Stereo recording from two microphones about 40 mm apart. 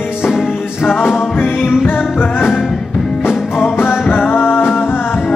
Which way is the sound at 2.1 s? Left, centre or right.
Left.